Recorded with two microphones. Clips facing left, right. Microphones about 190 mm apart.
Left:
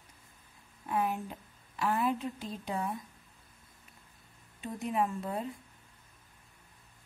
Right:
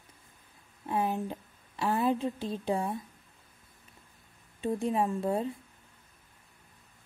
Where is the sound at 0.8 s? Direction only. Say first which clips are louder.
Right 2 dB; 30° right (ahead or behind).